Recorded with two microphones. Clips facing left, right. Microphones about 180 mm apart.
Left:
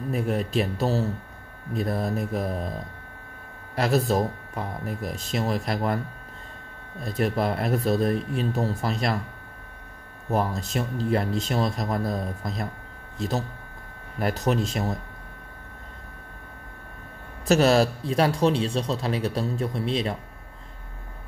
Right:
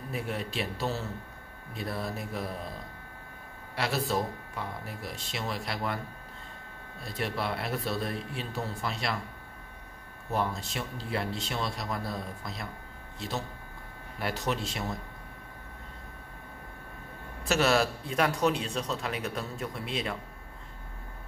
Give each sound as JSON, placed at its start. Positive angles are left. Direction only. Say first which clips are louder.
{"t": 0.1, "sound": "speech", "louder": "left 9 dB", "side_deg": 45}
{"t": 3.7, "sound": "speech", "louder": "left 7 dB", "side_deg": 45}
{"t": 7.0, "sound": "speech", "louder": "left 8 dB", "side_deg": 45}
{"t": 10.3, "sound": "speech", "louder": "left 6 dB", "side_deg": 40}
{"t": 14.2, "sound": "speech", "louder": "left 7 dB", "side_deg": 45}
{"t": 17.5, "sound": "a man's voice", "louder": "left 7 dB", "side_deg": 35}